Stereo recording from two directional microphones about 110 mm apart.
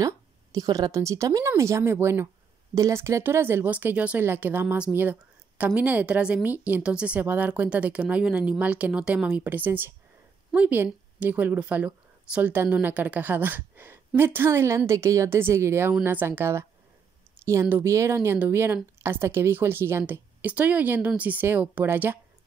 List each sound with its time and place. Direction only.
0.0 s a woman's voice: 35° right (ahead or behind)